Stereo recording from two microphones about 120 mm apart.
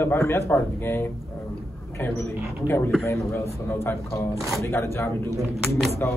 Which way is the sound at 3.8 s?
25° left (ahead or behind).